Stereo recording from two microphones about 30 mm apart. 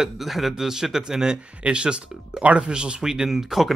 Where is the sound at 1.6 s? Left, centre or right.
Right.